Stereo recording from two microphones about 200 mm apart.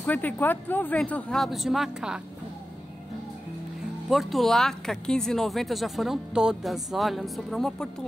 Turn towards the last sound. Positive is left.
turn(degrees=0)  # may be behind; listen again after turning